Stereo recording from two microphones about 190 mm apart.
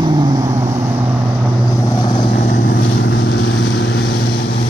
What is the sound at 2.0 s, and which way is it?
Vehicle, 25° left (ahead or behind).